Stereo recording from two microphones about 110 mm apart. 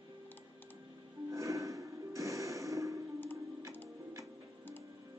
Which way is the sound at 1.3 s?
30° right (ahead or behind).